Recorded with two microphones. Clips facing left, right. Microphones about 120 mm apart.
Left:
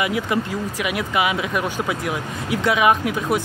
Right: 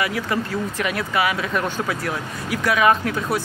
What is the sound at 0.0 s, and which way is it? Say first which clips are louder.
Speech: left 2 dB; 20° left (ahead or behind).